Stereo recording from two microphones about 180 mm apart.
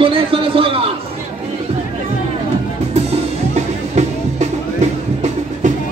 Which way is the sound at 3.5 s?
35° right (ahead or behind).